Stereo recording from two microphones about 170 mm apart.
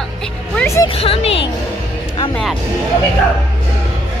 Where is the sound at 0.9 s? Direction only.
35° left (ahead or behind).